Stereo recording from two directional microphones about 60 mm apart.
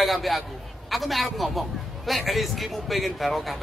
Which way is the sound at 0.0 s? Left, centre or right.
Centre.